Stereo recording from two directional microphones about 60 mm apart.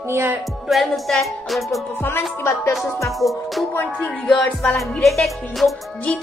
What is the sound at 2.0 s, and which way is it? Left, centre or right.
Speech, left.